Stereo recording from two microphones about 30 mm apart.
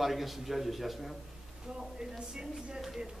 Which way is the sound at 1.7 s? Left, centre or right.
Centre.